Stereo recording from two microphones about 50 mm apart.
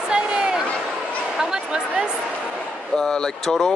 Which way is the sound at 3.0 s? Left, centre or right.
Centre.